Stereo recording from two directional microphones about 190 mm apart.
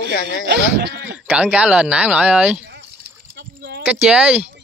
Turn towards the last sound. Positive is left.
turn(degrees=-5)  # may be behind; listen again after turning